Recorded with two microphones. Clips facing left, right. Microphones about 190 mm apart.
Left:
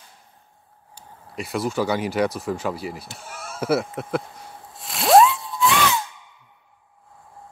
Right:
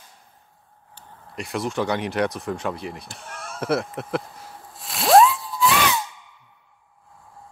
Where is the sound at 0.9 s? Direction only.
Centre (ahead or behind).